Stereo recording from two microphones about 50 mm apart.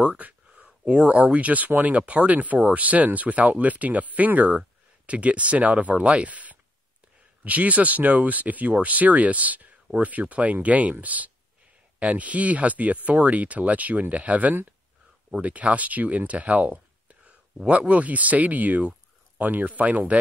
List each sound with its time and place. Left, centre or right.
0.0 s speech: right